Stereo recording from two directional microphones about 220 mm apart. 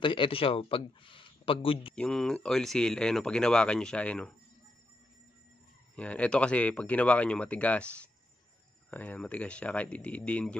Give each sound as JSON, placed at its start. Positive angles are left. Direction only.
{"t": 0.0, "sound": "speech", "side_deg": 25}
{"t": 2.0, "sound": "speech", "side_deg": 5}
{"t": 5.9, "sound": "speech", "side_deg": 5}
{"t": 8.9, "sound": "speech", "side_deg": 5}